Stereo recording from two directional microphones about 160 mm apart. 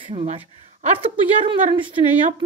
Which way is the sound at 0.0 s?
40° right (ahead or behind).